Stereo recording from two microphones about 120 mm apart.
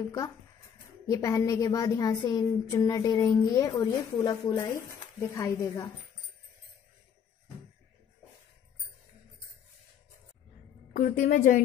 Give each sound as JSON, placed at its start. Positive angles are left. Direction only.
{"t": 1.1, "sound": "a woman's voice", "side_deg": 30}
{"t": 11.0, "sound": "a woman's voice", "side_deg": 90}